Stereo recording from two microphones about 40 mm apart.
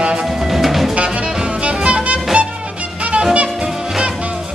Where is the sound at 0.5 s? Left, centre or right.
Centre.